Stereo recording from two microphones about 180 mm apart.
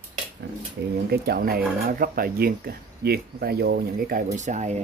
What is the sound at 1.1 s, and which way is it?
Speech, 60° right (ahead or behind).